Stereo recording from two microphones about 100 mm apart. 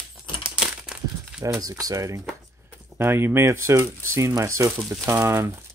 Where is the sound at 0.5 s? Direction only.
10° right (ahead or behind).